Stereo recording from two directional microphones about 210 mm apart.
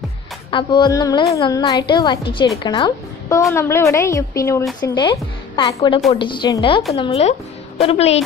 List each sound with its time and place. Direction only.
0.5 s a woman's voice: 20° left (ahead or behind)